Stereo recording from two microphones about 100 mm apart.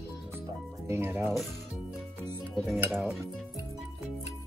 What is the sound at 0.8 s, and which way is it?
Speech, 25° right (ahead or behind).